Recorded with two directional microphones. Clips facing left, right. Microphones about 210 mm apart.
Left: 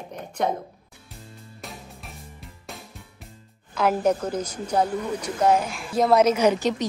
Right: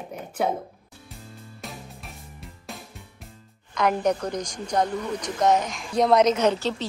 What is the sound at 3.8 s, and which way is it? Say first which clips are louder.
A woman's voice: left 1 dB; 5° left (ahead or behind).